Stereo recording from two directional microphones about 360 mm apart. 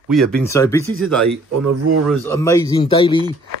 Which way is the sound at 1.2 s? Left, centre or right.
Right.